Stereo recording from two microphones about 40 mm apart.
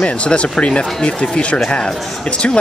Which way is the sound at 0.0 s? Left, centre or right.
Left.